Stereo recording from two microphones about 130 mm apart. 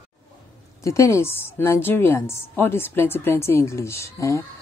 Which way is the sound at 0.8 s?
25° left (ahead or behind).